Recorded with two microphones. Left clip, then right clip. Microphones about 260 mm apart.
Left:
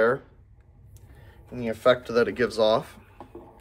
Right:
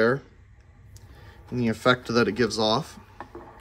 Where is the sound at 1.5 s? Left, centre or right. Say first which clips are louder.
Left 1 dB; right.